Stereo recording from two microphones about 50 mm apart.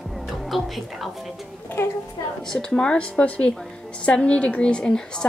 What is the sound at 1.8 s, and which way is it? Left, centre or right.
Speech, left.